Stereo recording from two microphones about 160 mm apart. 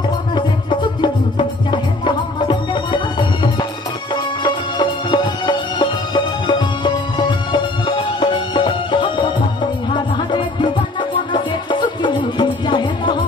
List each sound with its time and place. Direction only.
1.7 s music: 30° left (ahead or behind)
11.3 s music: 30° left (ahead or behind)